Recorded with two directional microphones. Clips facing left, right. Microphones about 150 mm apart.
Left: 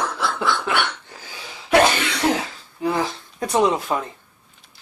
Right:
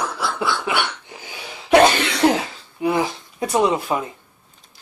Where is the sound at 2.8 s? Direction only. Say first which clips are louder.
Right 2 dB; 15° right (ahead or behind).